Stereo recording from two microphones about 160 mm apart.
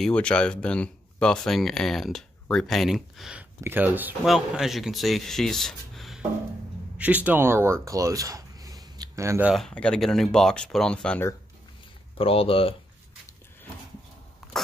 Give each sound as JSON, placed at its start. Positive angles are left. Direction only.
{"t": 0.0, "sound": "speech", "side_deg": 5}
{"t": 9.5, "sound": "speech", "side_deg": 5}
{"t": 12.2, "sound": "speech", "side_deg": 35}
{"t": 14.4, "sound": "a sound", "side_deg": 0}